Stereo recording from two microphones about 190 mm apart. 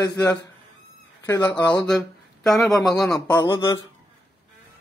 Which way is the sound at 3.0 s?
20° left (ahead or behind).